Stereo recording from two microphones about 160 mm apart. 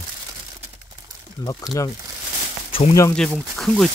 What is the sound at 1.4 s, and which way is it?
Speech, 20° left (ahead or behind).